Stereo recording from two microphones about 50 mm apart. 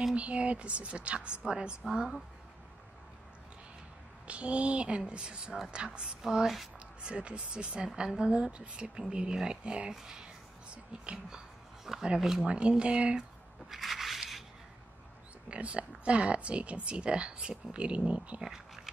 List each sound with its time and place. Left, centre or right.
0.1 s a woman's voice: right
4.3 s a woman's voice: right; by 6.7 s centre
7.0 s speech: right
9.9 s a sound: centre
11.9 s a woman's voice: centre
12.4 s speech: right
13.7 s a sound: centre
15.4 s speech: right
18.4 s a sound: centre